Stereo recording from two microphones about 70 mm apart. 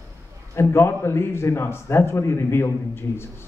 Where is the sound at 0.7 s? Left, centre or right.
Left.